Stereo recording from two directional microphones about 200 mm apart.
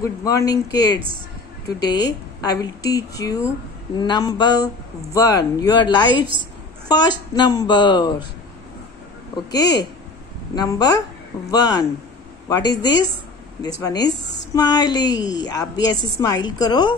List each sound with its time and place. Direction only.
0.0 s speech: 15° left (ahead or behind)
2.4 s a woman's voice: 20° left (ahead or behind)
9.5 s a woman's voice: 20° left (ahead or behind)